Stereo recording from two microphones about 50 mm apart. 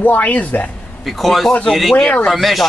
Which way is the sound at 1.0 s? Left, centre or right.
Centre.